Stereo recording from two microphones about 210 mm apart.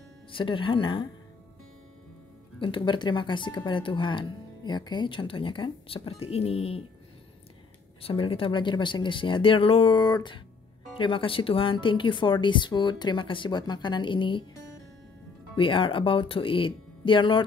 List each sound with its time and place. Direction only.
0.3 s speech: 25° left (ahead or behind)
2.6 s speech: 25° left (ahead or behind)
8.0 s speech: 25° left (ahead or behind)
15.5 s speech: 25° left (ahead or behind)